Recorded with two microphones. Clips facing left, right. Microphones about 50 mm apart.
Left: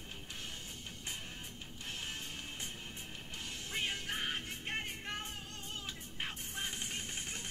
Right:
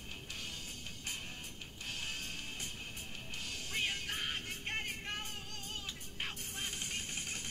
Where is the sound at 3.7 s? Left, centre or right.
Centre.